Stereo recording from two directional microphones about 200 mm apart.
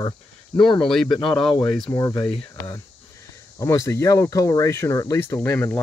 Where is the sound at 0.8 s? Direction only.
Centre (ahead or behind).